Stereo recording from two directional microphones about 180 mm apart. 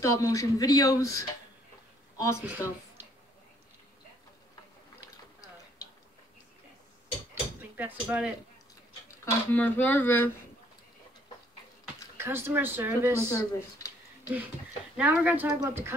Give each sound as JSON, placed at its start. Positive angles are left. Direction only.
{"t": 0.0, "sound": "speech", "side_deg": 20}
{"t": 7.7, "sound": "speech", "side_deg": -5}
{"t": 9.2, "sound": "speech", "side_deg": 10}
{"t": 12.2, "sound": "speech", "side_deg": -15}
{"t": 13.3, "sound": "a sound", "side_deg": 15}
{"t": 15.0, "sound": "speech", "side_deg": -10}